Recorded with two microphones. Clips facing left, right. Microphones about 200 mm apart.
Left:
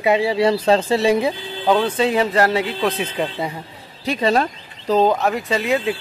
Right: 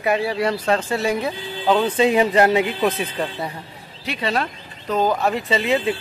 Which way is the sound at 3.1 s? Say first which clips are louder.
Left 3 dB; 10° left (ahead or behind).